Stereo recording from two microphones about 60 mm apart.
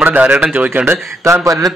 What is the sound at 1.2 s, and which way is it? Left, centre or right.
Speech, right.